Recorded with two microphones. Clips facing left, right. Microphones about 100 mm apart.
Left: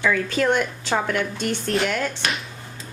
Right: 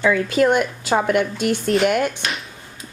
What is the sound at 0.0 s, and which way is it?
Speech, 10° right (ahead or behind).